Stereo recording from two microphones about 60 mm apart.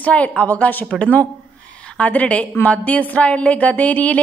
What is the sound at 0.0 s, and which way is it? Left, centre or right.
Speech, left.